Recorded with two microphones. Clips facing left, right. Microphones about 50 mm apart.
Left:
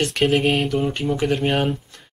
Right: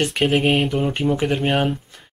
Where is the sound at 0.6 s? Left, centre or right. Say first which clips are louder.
Right 1 dB; centre.